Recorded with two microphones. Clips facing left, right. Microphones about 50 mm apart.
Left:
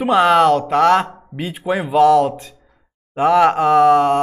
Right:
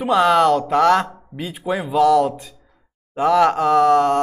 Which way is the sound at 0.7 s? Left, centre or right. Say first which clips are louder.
Left 2 dB; centre.